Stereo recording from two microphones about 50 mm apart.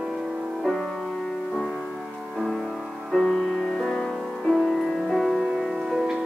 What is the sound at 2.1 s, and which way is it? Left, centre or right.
Music, centre.